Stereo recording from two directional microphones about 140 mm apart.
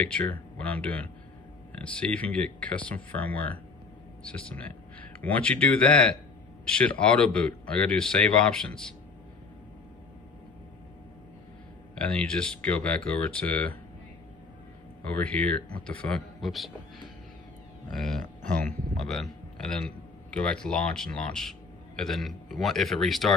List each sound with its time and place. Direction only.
0.1 s a man's voice: 10° left (ahead or behind)
11.9 s a man's voice: 10° left (ahead or behind)
15.0 s a man's voice: 10° left (ahead or behind)
16.3 s a man's voice: centre (ahead or behind)
17.9 s speech: 5° left (ahead or behind)
18.9 s a sound: centre (ahead or behind)
20.2 s a man's voice: 5° left (ahead or behind)